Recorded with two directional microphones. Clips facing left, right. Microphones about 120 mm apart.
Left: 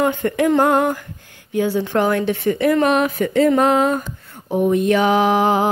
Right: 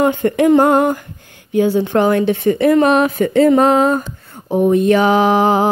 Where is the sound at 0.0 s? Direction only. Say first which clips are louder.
Right 4 dB; 25° right (ahead or behind).